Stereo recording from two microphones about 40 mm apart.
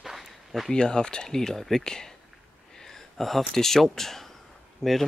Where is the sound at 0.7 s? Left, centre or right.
Left.